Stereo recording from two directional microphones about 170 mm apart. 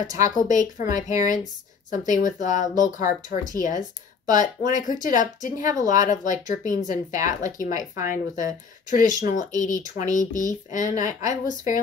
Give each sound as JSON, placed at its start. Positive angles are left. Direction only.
{"t": 0.0, "sound": "speech", "side_deg": 45}